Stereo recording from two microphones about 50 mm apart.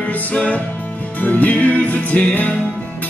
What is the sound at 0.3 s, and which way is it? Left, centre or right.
Music, left.